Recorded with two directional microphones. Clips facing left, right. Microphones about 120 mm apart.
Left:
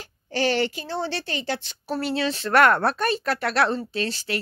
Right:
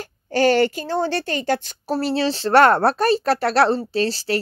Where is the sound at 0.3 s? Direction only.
45° right (ahead or behind).